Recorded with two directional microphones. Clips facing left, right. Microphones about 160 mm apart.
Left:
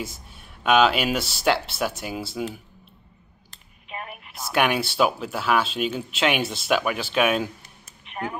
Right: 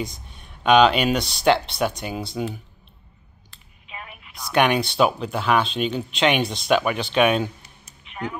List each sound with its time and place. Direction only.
0.0 s speech: 5° left (ahead or behind)
3.4 s clicking: 45° left (ahead or behind)
4.4 s speech: 5° left (ahead or behind)
7.6 s a sound: 50° left (ahead or behind)